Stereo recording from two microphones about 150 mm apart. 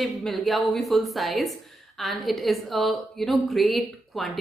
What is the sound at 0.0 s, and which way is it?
A woman's voice, centre (ahead or behind).